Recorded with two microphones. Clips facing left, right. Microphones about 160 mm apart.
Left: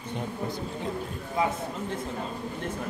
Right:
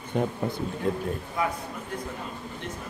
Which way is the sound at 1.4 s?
25° left (ahead or behind).